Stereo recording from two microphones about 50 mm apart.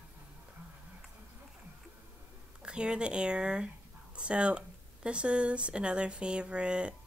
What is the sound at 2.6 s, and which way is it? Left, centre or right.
Speech, centre.